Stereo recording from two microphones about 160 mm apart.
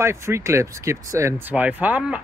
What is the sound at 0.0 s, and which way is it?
Speech, 15° right (ahead or behind).